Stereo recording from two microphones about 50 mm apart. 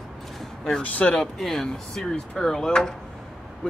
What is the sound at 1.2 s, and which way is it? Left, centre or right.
Speech, centre.